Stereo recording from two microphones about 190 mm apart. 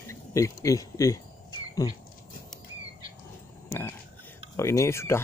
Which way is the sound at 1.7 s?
20° left (ahead or behind).